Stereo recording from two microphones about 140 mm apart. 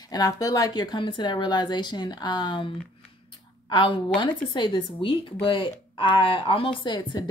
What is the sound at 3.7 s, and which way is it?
Speech, 35° left (ahead or behind).